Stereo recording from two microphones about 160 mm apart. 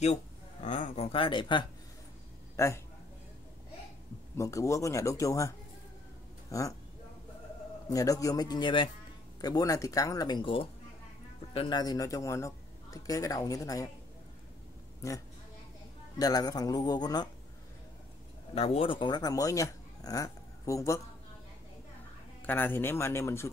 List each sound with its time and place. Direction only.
0.0 s speech: 45° left (ahead or behind); by 1.7 s 30° left (ahead or behind)
2.5 s a man's voice: 20° left (ahead or behind)
4.4 s a man's voice: 20° left (ahead or behind)
6.5 s speech: 20° left (ahead or behind)
7.9 s a man's voice: 20° left (ahead or behind)
15.0 s a man's voice: 20° left (ahead or behind)
18.5 s speech: 40° left (ahead or behind); by 21.0 s 20° left (ahead or behind)
22.4 s speech: 10° left (ahead or behind)